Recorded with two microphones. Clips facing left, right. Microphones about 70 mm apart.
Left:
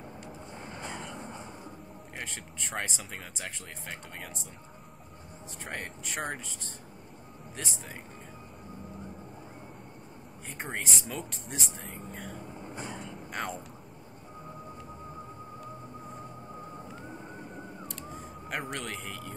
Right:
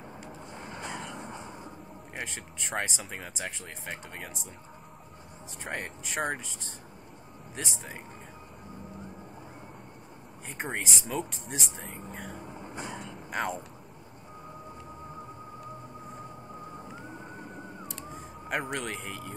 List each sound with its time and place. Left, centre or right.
0.5 s vehicle: centre
1.2 s a sound: right
2.1 s speech: centre
5.6 s speech: centre
10.6 s speech: centre
16.8 s a sound: centre